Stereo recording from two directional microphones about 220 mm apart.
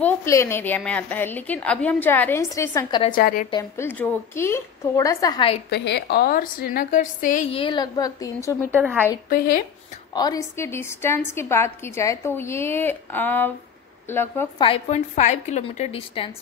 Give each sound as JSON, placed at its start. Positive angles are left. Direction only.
{"t": 0.0, "sound": "a woman's voice", "side_deg": 10}
{"t": 3.1, "sound": "a woman's voice", "side_deg": 40}
{"t": 3.4, "sound": "a woman's voice", "side_deg": 20}
{"t": 3.8, "sound": "a woman's voice", "side_deg": 10}
{"t": 5.7, "sound": "a woman's voice", "side_deg": 50}
{"t": 8.7, "sound": "a woman's voice", "side_deg": -10}
{"t": 10.1, "sound": "a woman's voice", "side_deg": 15}
{"t": 14.6, "sound": "a woman's voice", "side_deg": 30}